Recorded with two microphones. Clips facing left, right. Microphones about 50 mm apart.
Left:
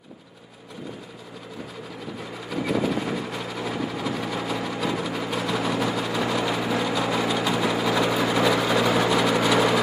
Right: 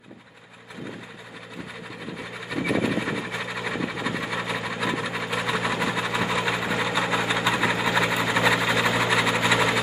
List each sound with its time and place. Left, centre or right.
2.5 s sewing machine: centre
6.6 s vehicle: centre
8.1 s vehicle: centre